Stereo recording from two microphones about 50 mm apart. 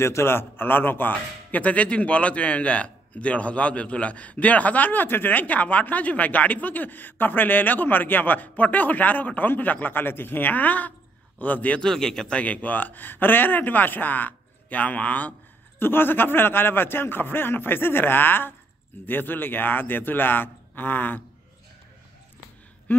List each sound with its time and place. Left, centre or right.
0.0 s speech: left
1.6 s a man's voice: left
11.8 s a man's voice: centre
12.4 s a man's voice: left
15.8 s speech: left
22.9 s a sound: left